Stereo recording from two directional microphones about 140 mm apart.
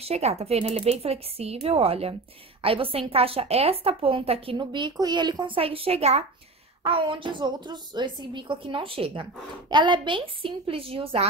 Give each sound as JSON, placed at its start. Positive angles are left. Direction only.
{"t": 0.0, "sound": "a woman's voice", "side_deg": -50}
{"t": 6.8, "sound": "a woman's voice", "side_deg": -35}